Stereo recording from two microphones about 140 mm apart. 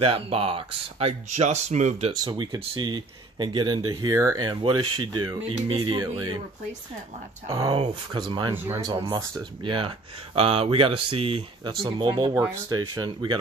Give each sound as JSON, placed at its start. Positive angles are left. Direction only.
{"t": 0.0, "sound": "speech", "side_deg": -40}
{"t": 2.2, "sound": "speech", "side_deg": -30}
{"t": 7.4, "sound": "speech", "side_deg": -35}
{"t": 9.7, "sound": "speech", "side_deg": -40}
{"t": 12.4, "sound": "speech", "side_deg": -20}